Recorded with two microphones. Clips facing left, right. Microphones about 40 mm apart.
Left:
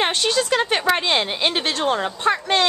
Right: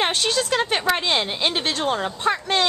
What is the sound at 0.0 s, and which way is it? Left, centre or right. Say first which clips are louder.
A woman's voice: left 2 dB; centre.